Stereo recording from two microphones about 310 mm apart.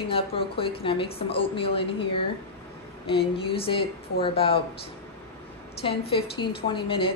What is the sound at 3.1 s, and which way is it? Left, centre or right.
A woman's voice, centre.